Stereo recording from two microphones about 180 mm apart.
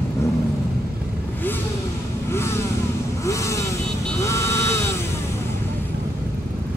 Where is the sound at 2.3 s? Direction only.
15° left (ahead or behind).